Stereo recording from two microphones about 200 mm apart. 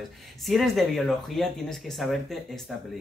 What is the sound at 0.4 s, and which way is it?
Speech, centre (ahead or behind).